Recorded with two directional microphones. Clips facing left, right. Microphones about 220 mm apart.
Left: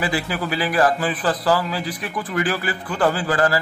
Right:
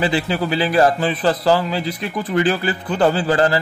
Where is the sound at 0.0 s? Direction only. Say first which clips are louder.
Right 4 dB; 25° right (ahead or behind).